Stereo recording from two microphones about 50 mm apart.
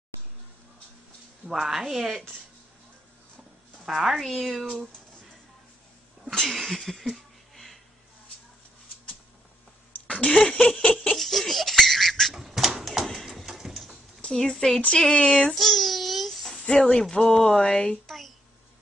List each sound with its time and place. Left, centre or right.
1.5 s speech: centre
3.8 s a woman's voice: centre
6.3 s a sound: centre
10.0 s speech: left
11.1 s laughter: centre
12.4 s bird: centre
13.0 s a sound: centre
14.2 s a woman's voice: centre
15.5 s babbling: centre
16.9 s a woman's voice: centre
18.0 s a sound: centre